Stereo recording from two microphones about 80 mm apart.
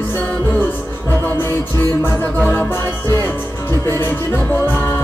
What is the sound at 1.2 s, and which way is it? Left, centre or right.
Music, left.